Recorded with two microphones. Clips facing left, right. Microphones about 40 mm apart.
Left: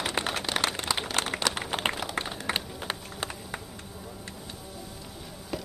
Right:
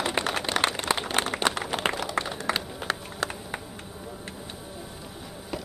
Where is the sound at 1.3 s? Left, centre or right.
Centre.